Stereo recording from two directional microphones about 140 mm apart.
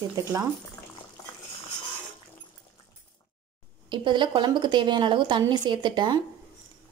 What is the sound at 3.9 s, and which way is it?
Speech, 35° right (ahead or behind).